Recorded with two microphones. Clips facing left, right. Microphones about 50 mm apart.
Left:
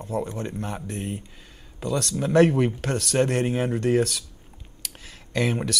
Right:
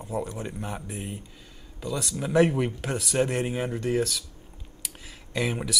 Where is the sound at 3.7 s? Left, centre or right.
Left.